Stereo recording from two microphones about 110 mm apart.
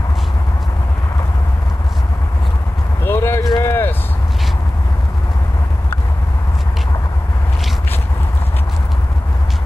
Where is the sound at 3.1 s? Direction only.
25° left (ahead or behind).